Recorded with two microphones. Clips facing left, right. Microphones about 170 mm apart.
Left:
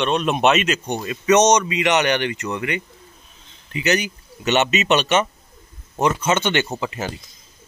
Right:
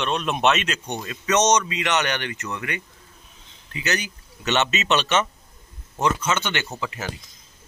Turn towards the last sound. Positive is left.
turn(degrees=25)  # may be behind; listen again after turning